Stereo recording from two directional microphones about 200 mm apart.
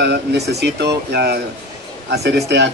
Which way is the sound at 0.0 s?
55° right (ahead or behind).